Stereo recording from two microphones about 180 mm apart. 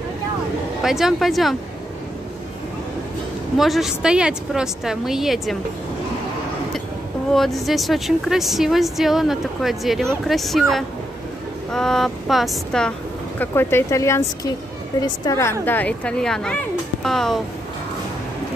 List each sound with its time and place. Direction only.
0.8 s speech: centre (ahead or behind)
3.5 s speech: centre (ahead or behind)
7.3 s speech: centre (ahead or behind)
13.4 s speech: 10° left (ahead or behind)